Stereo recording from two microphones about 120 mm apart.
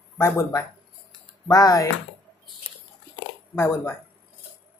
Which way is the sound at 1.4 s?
35° left (ahead or behind).